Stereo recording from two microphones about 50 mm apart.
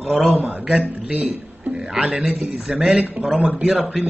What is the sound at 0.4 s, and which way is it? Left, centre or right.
Music, right.